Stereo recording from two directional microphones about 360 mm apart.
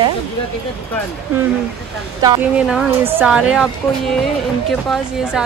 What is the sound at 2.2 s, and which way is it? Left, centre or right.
Speech, centre.